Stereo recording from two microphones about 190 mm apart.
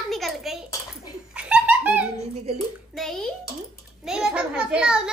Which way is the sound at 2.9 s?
Centre (ahead or behind).